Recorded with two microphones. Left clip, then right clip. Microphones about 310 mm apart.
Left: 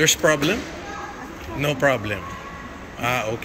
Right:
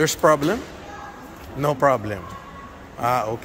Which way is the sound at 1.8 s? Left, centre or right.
Centre.